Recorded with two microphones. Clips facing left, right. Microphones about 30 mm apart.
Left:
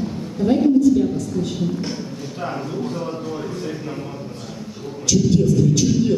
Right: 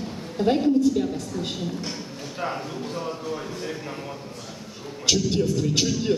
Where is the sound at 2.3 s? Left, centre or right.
Centre.